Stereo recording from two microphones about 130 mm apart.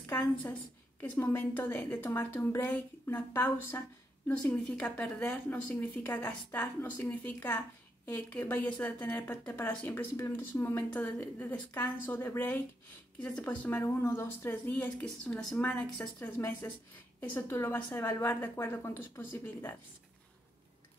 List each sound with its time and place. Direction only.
0.0 s a woman's voice: 15° left (ahead or behind)
15.2 s a woman's voice: 10° left (ahead or behind)
16.6 s a woman's voice: 25° left (ahead or behind)